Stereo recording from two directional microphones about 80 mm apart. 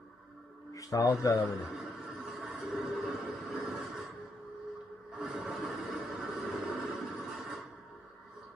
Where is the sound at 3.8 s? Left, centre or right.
Centre.